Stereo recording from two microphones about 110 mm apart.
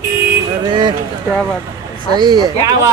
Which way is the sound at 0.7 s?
45° right (ahead or behind).